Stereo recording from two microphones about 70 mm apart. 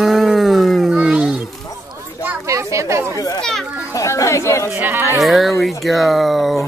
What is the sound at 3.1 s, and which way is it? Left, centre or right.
Children playing, left.